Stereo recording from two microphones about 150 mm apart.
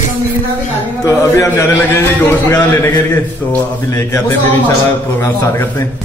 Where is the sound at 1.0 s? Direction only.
20° left (ahead or behind).